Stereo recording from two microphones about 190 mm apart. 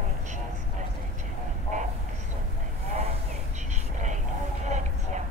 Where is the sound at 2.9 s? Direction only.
35° right (ahead or behind).